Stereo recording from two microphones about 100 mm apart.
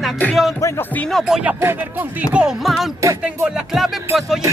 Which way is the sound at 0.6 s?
30° left (ahead or behind).